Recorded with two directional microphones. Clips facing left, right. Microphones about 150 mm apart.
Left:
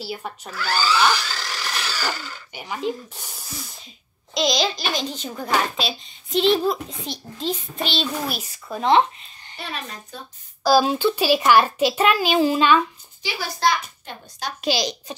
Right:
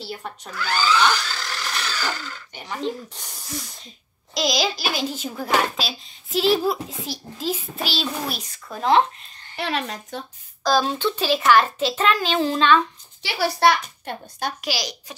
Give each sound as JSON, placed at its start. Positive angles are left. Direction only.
{"t": 0.0, "sound": "speech", "side_deg": 5}
{"t": 8.4, "sound": "speech", "side_deg": 5}
{"t": 9.6, "sound": "speech", "side_deg": -80}
{"t": 10.6, "sound": "a child's voice", "side_deg": 10}
{"t": 13.2, "sound": "a child's voice", "side_deg": -70}
{"t": 14.6, "sound": "a child's voice", "side_deg": 25}